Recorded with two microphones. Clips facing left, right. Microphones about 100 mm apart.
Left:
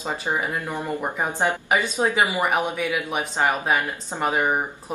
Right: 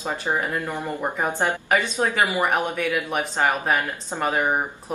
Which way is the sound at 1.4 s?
15° left (ahead or behind).